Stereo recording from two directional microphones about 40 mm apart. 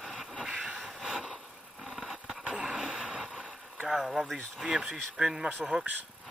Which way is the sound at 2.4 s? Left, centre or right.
Right.